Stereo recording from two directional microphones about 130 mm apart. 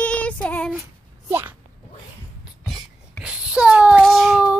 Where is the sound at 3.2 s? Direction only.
5° right (ahead or behind).